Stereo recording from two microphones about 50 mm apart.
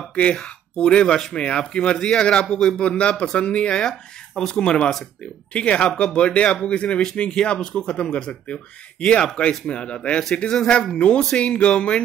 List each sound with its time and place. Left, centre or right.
0.1 s speech: left